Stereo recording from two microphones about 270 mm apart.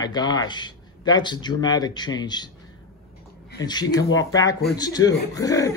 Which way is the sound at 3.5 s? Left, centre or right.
Centre.